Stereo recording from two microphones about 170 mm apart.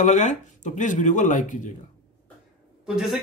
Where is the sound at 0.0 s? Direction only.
45° left (ahead or behind).